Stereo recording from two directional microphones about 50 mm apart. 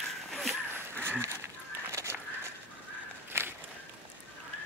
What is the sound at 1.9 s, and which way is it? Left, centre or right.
Fowl, right.